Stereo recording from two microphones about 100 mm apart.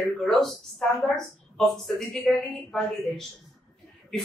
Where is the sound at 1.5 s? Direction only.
5° left (ahead or behind).